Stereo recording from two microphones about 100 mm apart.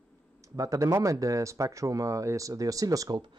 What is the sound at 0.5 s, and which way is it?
Speech, 35° right (ahead or behind).